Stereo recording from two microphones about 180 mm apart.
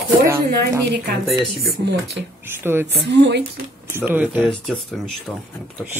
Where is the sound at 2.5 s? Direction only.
10° right (ahead or behind).